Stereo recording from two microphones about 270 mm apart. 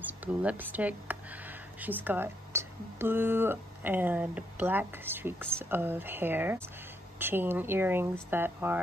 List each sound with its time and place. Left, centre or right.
0.2 s speech: centre